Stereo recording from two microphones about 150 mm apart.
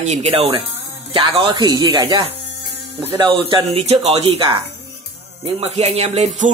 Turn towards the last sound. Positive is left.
turn(degrees=-45)  # may be behind; listen again after turning